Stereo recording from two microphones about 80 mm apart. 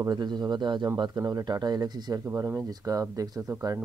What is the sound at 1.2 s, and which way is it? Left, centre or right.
Speech, right.